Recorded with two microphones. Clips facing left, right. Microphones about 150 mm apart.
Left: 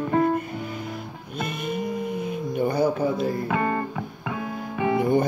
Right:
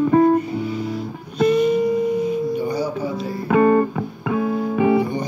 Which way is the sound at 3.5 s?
50° right (ahead or behind).